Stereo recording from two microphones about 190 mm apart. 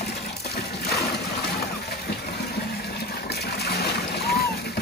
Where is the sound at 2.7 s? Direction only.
55° left (ahead or behind).